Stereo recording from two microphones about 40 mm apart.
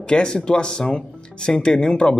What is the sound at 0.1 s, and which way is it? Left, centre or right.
Speech, left.